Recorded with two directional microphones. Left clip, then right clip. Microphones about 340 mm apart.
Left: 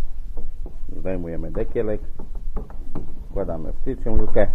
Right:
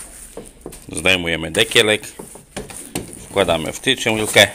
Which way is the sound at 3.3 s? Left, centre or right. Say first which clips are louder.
Right 12 dB; right.